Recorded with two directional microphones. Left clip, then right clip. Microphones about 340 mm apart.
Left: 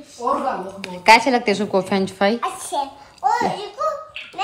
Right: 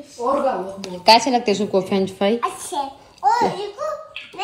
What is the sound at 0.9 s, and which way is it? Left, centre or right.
Speech, left.